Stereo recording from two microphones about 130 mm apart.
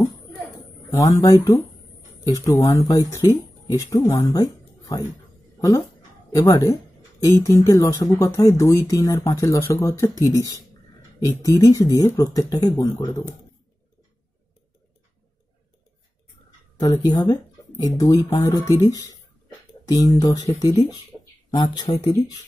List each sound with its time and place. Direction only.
0.8 s speech: 25° left (ahead or behind)
2.7 s speech: 25° left (ahead or behind)
4.3 s a sound: 25° left (ahead or behind)
5.6 s speech: 25° left (ahead or behind)
12.9 s speech: 20° left (ahead or behind)
16.8 s speech: 30° left (ahead or behind)